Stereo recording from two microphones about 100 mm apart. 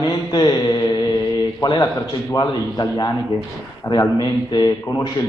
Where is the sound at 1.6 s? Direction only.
45° left (ahead or behind).